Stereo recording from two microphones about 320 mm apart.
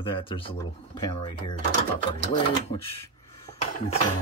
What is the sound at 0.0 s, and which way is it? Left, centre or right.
Speech, centre.